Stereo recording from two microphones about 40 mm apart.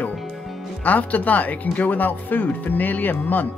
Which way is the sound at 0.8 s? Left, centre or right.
Left.